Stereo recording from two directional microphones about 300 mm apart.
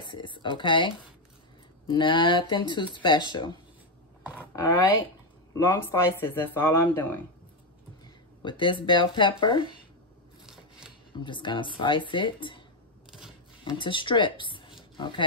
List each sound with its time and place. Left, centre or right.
0.0 s speech: centre
5.5 s speech: centre
8.4 s speech: centre
10.4 s scissors: centre
11.1 s speech: centre
13.7 s speech: centre